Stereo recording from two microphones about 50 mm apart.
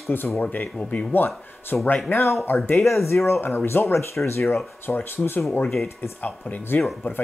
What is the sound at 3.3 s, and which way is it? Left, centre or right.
Speech, left.